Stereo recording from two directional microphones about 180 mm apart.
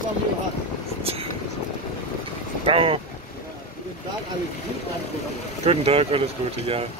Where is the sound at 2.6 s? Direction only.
30° right (ahead or behind).